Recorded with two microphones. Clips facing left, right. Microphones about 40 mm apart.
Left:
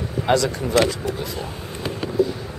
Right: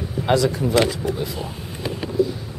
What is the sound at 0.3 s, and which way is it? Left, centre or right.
Speech, centre.